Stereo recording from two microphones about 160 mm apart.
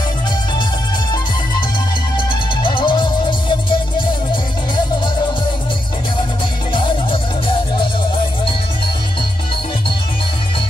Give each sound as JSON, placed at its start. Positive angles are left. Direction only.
{"t": 2.1, "sound": "music", "side_deg": 30}